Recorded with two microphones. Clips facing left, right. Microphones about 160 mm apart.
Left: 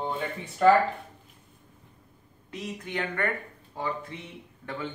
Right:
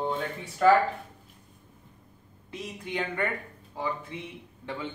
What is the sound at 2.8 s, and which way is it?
Speech, 15° right (ahead or behind).